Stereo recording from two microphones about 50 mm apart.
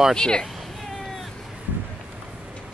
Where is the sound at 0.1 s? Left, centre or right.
Centre.